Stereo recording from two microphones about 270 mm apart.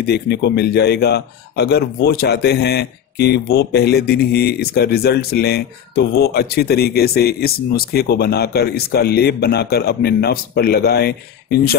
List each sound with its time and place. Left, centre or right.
0.0 s a man's voice: left